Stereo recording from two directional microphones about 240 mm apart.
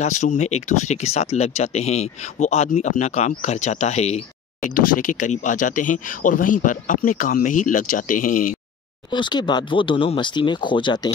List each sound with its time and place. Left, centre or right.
0.0 s speech: left
9.1 s speech: centre